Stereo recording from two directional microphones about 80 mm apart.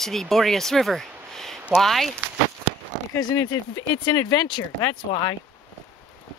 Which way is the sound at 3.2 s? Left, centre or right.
Left.